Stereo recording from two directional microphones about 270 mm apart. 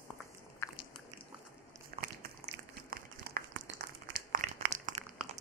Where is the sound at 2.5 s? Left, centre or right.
Right.